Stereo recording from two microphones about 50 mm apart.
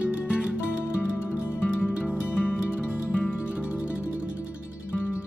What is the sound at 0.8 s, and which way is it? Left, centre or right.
Music, left.